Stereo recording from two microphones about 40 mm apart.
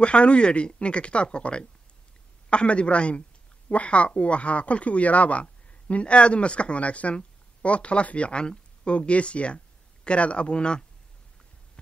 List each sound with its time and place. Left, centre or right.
0.0 s a woman's voice: left